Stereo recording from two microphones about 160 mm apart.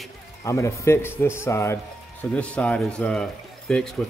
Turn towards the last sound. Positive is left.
turn(degrees=5)  # may be behind; listen again after turning